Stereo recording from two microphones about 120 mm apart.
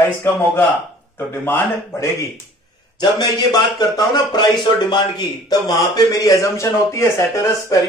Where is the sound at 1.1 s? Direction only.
20° left (ahead or behind).